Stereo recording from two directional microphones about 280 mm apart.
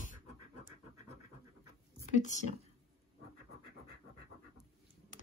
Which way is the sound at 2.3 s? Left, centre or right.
Left.